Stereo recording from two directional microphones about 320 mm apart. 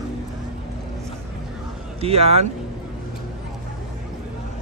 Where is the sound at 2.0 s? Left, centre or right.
Centre.